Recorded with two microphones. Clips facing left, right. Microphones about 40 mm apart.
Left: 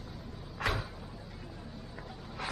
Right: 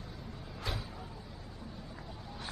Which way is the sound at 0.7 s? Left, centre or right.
Left.